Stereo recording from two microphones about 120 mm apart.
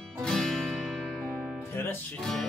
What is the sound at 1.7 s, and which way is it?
Music, 20° left (ahead or behind).